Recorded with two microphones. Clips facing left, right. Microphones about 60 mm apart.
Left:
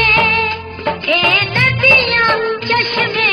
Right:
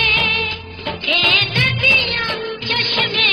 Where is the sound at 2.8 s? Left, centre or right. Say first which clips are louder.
Left 4 dB; left.